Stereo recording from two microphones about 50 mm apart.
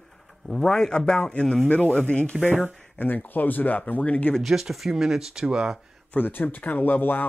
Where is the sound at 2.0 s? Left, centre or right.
Left.